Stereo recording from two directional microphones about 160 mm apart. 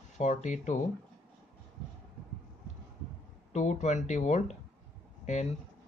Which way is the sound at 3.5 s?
45° left (ahead or behind).